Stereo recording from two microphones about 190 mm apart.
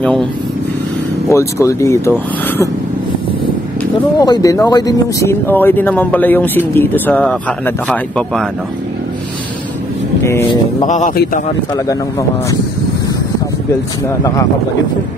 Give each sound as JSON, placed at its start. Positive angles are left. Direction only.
{"t": 1.3, "sound": "speech", "side_deg": 15}
{"t": 4.2, "sound": "speech", "side_deg": 20}
{"t": 10.2, "sound": "speech", "side_deg": 20}
{"t": 10.9, "sound": "a man's voice", "side_deg": 40}
{"t": 11.7, "sound": "speech", "side_deg": 20}
{"t": 14.2, "sound": "speech", "side_deg": 20}